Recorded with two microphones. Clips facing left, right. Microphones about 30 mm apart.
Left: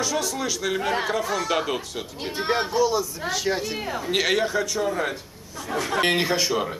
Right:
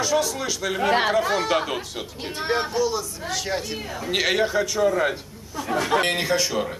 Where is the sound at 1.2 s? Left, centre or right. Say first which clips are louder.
Right 3 dB; right.